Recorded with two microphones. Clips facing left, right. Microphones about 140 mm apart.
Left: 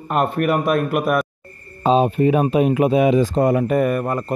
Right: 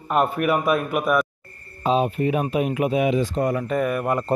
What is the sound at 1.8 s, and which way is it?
Speech, 30° left (ahead or behind).